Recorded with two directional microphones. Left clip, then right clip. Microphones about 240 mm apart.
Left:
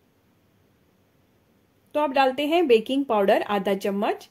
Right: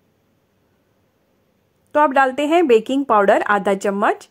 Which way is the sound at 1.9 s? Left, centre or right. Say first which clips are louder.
Right 7 dB; centre.